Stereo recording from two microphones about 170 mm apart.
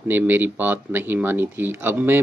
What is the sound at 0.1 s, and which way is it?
Speech, 10° right (ahead or behind).